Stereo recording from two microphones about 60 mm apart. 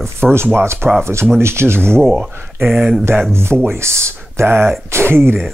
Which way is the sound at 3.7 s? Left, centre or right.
Right.